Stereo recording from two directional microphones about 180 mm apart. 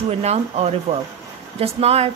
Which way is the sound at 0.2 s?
35° right (ahead or behind).